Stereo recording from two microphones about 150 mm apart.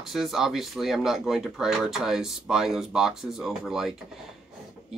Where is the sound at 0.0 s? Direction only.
Centre (ahead or behind).